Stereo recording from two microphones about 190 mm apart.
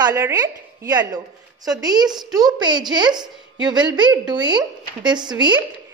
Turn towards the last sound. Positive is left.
turn(degrees=-25)  # may be behind; listen again after turning